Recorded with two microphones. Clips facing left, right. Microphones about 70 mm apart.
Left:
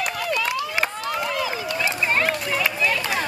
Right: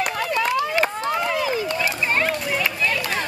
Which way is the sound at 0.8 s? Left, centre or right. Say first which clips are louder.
Right 3 dB; right.